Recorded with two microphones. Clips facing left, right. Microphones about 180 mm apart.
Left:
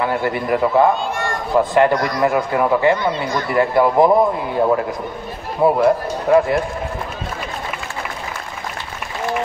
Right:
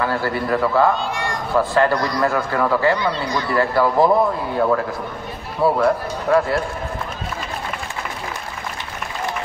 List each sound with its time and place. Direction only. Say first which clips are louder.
0.0 s a man's voice: left 2 dB; 20° left (ahead or behind)